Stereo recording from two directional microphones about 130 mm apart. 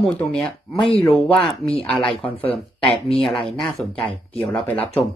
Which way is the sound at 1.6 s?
45° left (ahead or behind).